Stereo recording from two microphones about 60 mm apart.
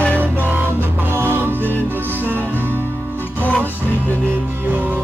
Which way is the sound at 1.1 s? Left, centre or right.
Right.